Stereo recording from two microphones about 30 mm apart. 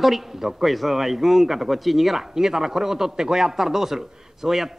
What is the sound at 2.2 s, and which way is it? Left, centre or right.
A man's voice, centre.